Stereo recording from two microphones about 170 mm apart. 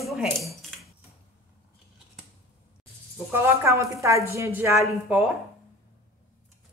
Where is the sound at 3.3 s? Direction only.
15° right (ahead or behind).